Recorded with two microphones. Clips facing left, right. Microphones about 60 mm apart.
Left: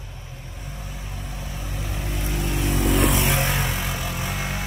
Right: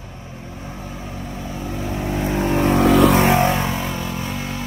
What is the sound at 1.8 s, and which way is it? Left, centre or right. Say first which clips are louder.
Vehicle: right 9 dB; right.